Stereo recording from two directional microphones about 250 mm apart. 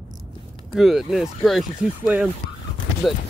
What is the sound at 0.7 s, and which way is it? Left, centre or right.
Speech, centre.